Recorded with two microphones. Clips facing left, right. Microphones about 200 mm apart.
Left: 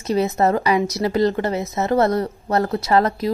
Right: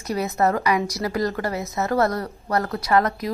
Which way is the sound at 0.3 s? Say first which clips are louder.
Left 3 dB; 20° left (ahead or behind).